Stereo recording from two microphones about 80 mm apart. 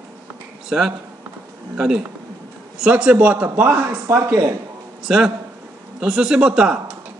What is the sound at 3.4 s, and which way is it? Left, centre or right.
Speech, right.